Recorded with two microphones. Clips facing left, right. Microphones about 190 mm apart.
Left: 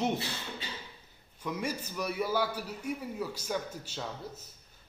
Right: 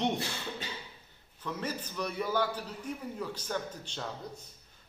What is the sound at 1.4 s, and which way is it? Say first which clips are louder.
A man's voice: left 2 dB; 10° left (ahead or behind).